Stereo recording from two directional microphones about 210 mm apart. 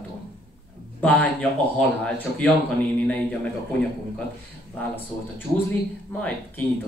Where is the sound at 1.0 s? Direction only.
5° left (ahead or behind).